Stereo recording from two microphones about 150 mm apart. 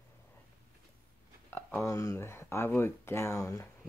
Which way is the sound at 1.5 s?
15° left (ahead or behind).